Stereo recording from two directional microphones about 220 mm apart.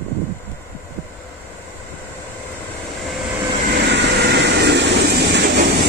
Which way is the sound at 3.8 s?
50° right (ahead or behind).